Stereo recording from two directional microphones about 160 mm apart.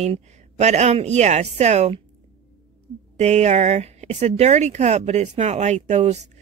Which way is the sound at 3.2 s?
45° right (ahead or behind).